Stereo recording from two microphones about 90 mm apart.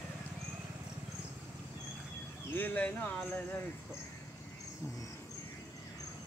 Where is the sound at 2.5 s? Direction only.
20° left (ahead or behind).